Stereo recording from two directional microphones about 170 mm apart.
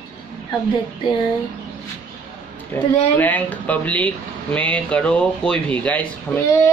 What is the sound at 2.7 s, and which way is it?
Speech, 15° left (ahead or behind).